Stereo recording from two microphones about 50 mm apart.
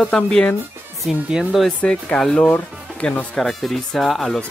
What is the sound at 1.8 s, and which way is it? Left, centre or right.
Speech, left.